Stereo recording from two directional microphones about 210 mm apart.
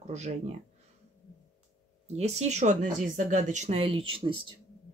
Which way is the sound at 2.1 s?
30° right (ahead or behind).